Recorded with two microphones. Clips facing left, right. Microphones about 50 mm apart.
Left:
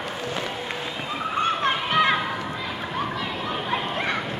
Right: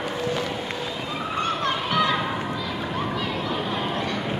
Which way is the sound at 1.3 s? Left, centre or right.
Left.